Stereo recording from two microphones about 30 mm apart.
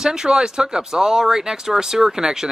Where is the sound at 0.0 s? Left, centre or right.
Right.